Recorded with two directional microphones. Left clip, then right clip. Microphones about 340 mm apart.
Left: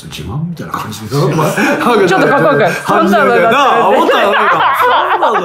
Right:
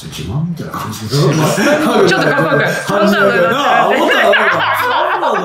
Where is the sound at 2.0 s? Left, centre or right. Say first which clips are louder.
Left 3 dB; centre.